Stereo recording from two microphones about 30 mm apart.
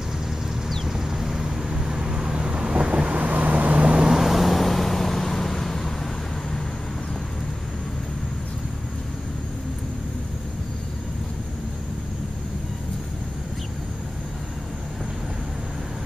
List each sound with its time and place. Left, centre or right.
0.8 s vehicle: centre; by 2.9 s right
3.2 s vehicle: right
4.1 s vehicle: centre